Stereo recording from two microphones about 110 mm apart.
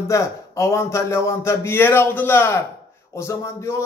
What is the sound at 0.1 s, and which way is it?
A man's voice, 25° left (ahead or behind).